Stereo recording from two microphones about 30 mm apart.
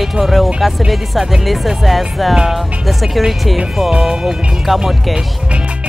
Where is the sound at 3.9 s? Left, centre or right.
Right.